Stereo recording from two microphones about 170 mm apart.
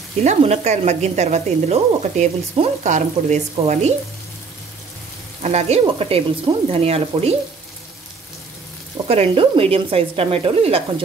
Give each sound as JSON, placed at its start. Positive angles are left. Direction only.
{"t": 0.2, "sound": "speech", "side_deg": -40}
{"t": 5.4, "sound": "speech", "side_deg": -40}
{"t": 9.0, "sound": "speech", "side_deg": -35}